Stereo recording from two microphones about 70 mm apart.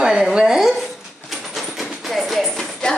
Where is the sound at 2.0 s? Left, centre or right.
Centre.